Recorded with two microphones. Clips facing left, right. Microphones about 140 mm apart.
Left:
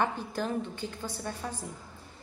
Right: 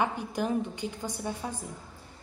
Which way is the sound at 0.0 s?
15° right (ahead or behind).